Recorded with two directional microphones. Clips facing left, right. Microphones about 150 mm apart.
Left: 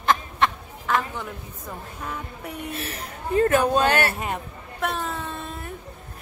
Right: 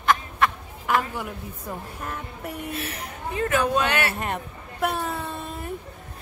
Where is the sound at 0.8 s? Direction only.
10° right (ahead or behind).